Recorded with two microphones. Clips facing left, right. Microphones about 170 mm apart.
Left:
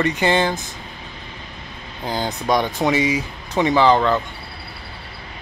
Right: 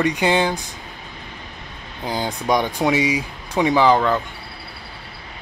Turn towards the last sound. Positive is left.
turn(degrees=-10)  # may be behind; listen again after turning